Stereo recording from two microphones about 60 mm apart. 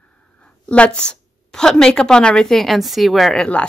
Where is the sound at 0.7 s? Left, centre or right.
Centre.